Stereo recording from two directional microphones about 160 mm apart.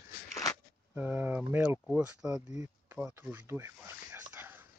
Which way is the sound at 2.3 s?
20° right (ahead or behind).